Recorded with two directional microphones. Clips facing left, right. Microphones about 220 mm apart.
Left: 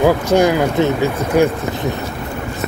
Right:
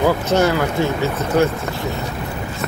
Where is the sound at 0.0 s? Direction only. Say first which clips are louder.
Left 3 dB; 15° left (ahead or behind).